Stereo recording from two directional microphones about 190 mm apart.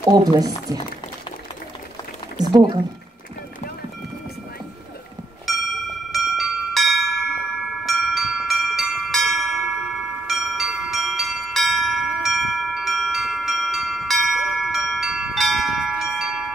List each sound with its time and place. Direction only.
0.1 s speech: 20° right (ahead or behind)
2.3 s speech: 20° right (ahead or behind)
5.5 s a sound: centre (ahead or behind)
6.1 s bell: centre (ahead or behind)